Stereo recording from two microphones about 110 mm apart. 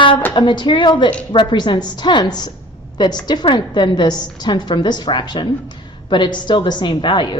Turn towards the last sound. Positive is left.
turn(degrees=45)  # may be behind; listen again after turning